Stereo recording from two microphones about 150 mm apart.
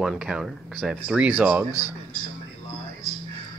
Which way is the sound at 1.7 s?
25° left (ahead or behind).